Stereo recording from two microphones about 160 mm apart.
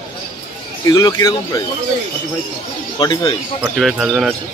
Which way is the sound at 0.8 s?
20° left (ahead or behind).